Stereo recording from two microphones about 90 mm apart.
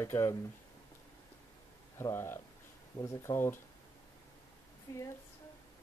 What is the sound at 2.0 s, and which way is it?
Speech, 25° left (ahead or behind).